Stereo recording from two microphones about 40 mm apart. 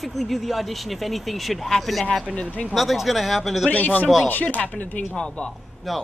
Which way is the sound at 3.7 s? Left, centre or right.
Left.